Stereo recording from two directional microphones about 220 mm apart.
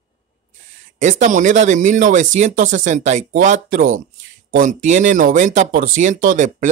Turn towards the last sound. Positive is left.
turn(degrees=-35)  # may be behind; listen again after turning